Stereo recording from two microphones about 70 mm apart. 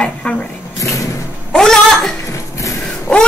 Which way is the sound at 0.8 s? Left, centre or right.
Left.